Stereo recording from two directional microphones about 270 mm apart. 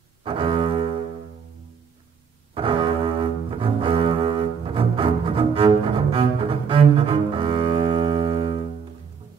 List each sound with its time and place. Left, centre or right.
0.2 s cello: centre
2.5 s cello: centre